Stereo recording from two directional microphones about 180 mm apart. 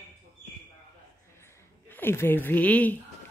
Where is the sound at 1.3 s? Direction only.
15° left (ahead or behind).